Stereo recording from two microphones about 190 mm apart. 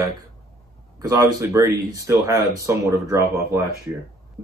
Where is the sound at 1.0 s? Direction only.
20° right (ahead or behind).